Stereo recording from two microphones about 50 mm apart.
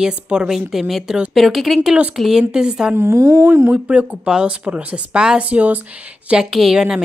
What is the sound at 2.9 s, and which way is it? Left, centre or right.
Speech, right.